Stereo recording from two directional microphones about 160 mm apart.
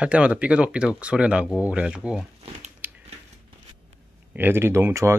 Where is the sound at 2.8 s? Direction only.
10° right (ahead or behind).